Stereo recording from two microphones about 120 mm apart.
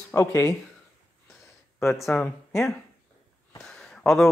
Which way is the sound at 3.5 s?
5° left (ahead or behind).